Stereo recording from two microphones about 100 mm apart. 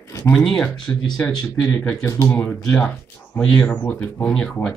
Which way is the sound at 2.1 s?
30° left (ahead or behind).